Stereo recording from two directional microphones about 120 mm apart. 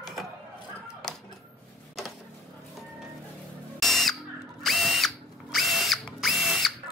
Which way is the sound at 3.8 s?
Centre (ahead or behind).